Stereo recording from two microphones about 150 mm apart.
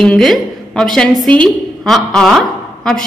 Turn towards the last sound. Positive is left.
turn(degrees=5)  # may be behind; listen again after turning